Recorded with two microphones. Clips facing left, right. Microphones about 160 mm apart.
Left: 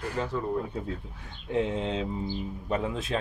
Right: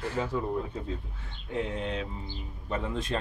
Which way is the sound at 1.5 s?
25° left (ahead or behind).